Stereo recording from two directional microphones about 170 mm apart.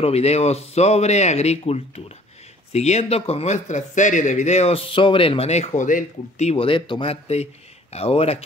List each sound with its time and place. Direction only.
0.0 s a man's voice: 40° left (ahead or behind)